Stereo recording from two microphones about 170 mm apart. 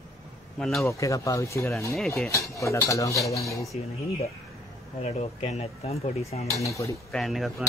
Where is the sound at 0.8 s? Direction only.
20° left (ahead or behind).